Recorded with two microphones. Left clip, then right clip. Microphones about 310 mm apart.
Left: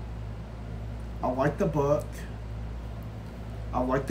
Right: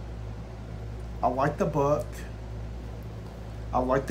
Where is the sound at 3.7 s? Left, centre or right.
Centre.